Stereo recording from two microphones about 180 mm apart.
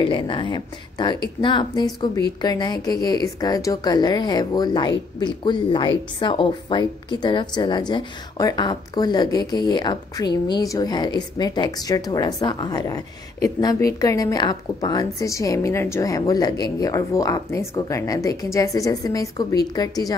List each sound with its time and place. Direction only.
0.0 s a woman's voice: 25° left (ahead or behind)